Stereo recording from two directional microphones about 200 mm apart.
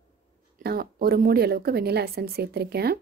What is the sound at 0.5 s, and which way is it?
A woman's voice, 50° right (ahead or behind).